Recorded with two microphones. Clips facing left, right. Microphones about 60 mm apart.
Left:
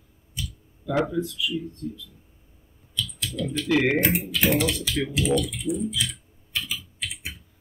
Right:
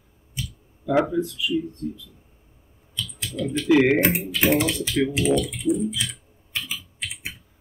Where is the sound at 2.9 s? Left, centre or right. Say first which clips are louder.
Left 1 dB; right.